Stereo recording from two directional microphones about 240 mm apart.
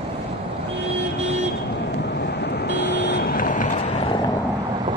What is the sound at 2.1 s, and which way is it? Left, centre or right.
Vehicle, left.